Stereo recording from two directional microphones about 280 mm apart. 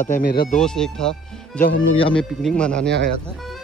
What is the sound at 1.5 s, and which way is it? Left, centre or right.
Speech, left.